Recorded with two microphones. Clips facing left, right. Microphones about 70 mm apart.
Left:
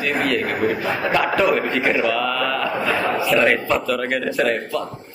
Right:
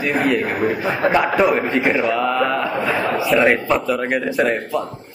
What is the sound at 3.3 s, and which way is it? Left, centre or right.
A man's voice, centre.